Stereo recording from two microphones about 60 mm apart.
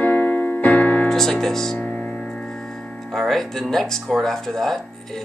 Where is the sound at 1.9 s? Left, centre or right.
Centre.